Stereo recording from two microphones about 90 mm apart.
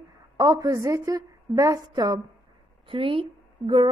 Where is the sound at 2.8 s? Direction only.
75° right (ahead or behind).